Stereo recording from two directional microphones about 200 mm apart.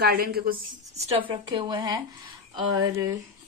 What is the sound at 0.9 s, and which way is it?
A woman's voice, 30° right (ahead or behind).